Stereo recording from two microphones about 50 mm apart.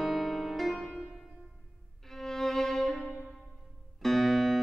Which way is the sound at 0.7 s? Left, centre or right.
Centre.